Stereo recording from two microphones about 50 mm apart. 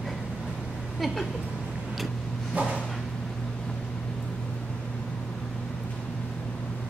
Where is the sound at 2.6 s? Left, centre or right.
Right.